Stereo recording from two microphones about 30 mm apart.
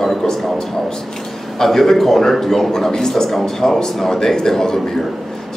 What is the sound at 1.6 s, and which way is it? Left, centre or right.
Speech, centre.